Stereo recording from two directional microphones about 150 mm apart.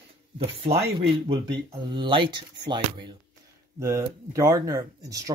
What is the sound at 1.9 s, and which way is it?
Speech, 35° right (ahead or behind).